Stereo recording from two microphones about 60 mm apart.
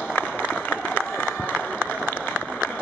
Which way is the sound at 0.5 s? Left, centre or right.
Left.